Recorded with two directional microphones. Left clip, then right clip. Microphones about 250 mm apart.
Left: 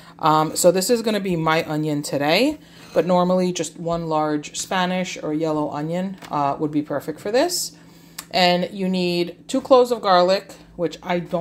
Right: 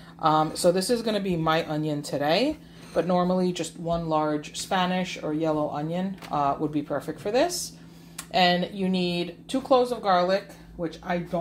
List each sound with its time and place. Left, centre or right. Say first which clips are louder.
0.2 s speech: left 5 dB; left